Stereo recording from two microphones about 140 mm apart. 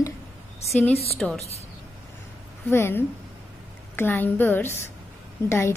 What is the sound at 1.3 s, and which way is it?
Speech, 50° left (ahead or behind).